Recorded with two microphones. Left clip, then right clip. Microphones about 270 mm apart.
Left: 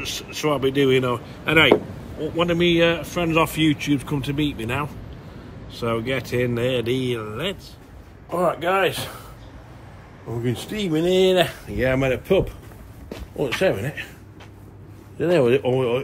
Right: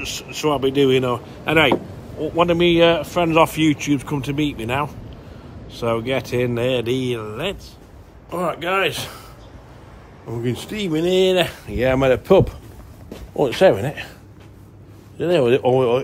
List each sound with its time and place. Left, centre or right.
0.0 s speech: centre
8.3 s speech: centre
10.4 s speech: centre
15.1 s speech: centre